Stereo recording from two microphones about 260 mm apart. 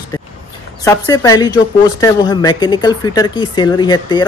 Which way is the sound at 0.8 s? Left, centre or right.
Centre.